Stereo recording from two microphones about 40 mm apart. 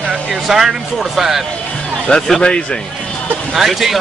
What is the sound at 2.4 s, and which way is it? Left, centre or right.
Speech, left.